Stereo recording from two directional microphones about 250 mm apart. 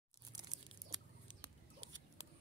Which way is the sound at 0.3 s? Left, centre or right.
Centre.